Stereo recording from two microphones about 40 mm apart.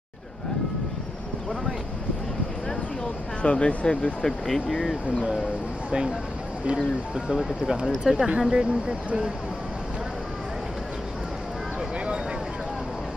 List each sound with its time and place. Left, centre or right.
3.4 s speech: left
4.2 s speech: centre
7.6 s speech: centre
8.4 s speech: centre